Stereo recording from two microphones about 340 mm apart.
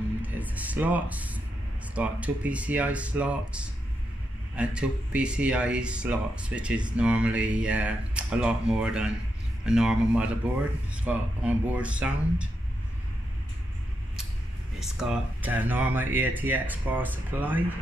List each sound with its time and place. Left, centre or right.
0.2 s music: centre
2.0 s speech: centre
14.8 s speech: centre